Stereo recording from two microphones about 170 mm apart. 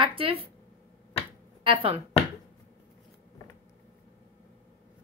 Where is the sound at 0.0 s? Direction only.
30° right (ahead or behind).